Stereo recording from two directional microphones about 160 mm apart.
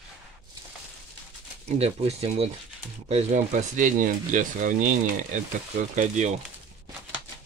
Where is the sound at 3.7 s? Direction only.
50° right (ahead or behind).